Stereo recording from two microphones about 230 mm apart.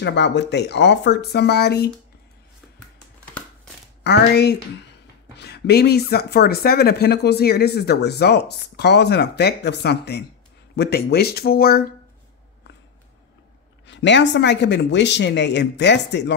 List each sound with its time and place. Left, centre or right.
0.0 s speech: left
4.0 s speech: left
13.8 s speech: left